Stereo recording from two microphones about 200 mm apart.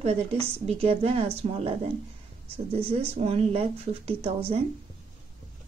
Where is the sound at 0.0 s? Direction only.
30° right (ahead or behind).